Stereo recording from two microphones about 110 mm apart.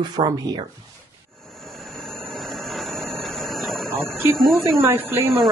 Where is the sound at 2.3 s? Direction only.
Centre (ahead or behind).